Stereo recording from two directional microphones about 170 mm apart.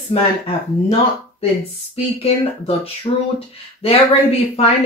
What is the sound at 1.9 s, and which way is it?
Speech, 35° left (ahead or behind).